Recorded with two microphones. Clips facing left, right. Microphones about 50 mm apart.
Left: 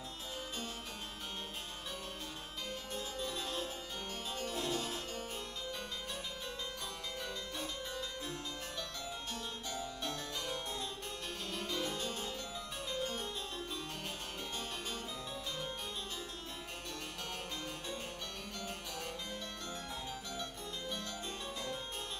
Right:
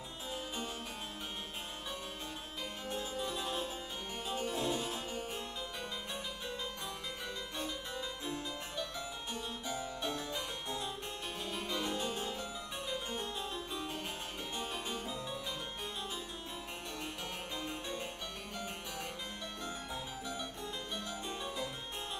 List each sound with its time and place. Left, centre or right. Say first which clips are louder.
2.9 s music: right 4 dB; centre
7.5 s harpsichord: right 1 dB; centre
9.8 s music: right 2 dB; centre
11.5 s harpsichord: right 1 dB; centre
12.9 s music: left 1 dB; centre